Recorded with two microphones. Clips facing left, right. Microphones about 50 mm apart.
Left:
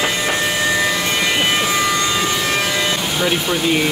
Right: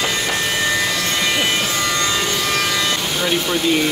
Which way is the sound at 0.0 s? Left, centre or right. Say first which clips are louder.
Left 2 dB; centre.